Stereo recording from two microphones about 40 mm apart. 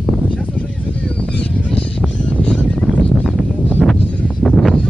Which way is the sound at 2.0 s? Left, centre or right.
Left.